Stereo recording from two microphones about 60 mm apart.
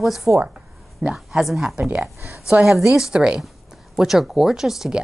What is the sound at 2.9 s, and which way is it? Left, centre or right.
Speech, centre.